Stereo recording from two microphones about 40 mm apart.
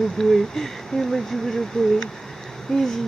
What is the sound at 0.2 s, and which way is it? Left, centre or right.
Speech, centre.